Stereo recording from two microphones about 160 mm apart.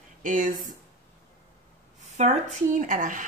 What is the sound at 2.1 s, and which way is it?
Speech, 45° right (ahead or behind).